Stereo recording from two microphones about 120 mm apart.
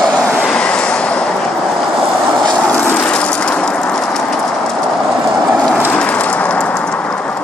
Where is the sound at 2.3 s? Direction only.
5° left (ahead or behind).